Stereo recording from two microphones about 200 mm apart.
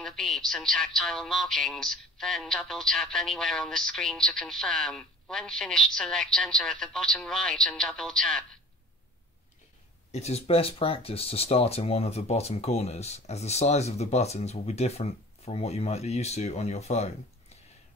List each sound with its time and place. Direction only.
0.0 s speech: centre (ahead or behind)
10.1 s speech: 30° left (ahead or behind)